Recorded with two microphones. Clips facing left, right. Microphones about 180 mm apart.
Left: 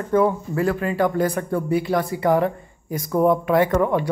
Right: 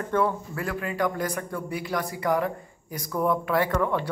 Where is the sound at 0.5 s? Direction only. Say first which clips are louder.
Left 8 dB; 30° left (ahead or behind).